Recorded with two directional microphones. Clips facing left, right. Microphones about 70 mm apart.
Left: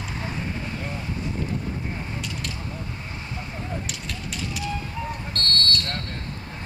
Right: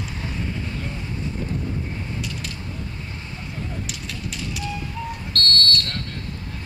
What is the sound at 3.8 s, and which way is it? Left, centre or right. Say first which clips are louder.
Fire: right 1 dB; centre.